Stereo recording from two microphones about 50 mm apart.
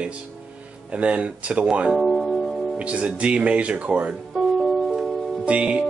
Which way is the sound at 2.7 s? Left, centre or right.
Right.